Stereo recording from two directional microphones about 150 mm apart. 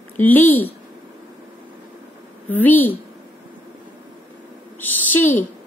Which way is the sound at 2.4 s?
10° left (ahead or behind).